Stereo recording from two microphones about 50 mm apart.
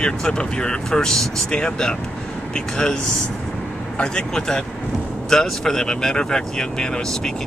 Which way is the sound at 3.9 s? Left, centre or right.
Centre.